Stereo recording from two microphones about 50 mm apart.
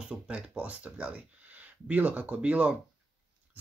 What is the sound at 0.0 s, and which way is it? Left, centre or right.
Speech, right.